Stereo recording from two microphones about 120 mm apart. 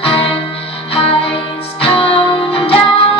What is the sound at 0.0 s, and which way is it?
Music, 50° left (ahead or behind).